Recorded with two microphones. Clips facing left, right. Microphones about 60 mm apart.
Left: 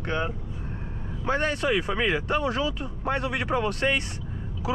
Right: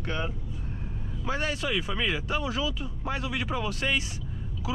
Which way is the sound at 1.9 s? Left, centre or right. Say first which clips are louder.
Left 4 dB; left.